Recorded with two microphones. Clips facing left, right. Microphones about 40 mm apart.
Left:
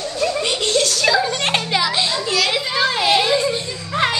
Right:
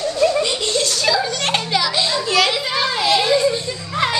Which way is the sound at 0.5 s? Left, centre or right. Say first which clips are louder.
Left 2 dB; left.